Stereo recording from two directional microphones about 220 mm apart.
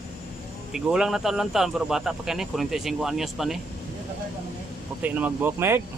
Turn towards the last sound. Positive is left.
turn(degrees=-10)  # may be behind; listen again after turning